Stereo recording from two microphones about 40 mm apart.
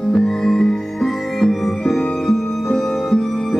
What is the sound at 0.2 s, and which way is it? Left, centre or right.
Music, centre.